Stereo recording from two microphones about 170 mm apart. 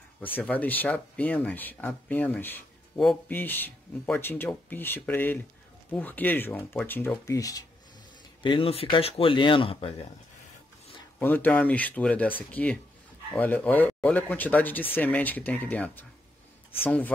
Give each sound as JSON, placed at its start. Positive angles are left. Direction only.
{"t": 0.4, "sound": "speech", "side_deg": 10}
{"t": 11.1, "sound": "speech", "side_deg": 10}